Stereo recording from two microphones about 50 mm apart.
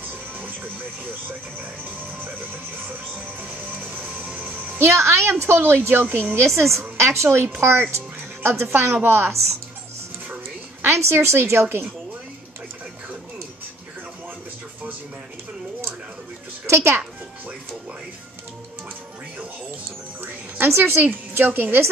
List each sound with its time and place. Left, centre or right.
3.9 s music: right
4.7 s speech: right
5.4 s a woman's voice: right
6.3 s a woman's voice: right
10.9 s speech: right
16.6 s speech: right
20.2 s a woman's voice: right